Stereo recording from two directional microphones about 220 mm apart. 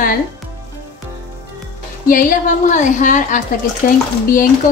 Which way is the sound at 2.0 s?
40° left (ahead or behind).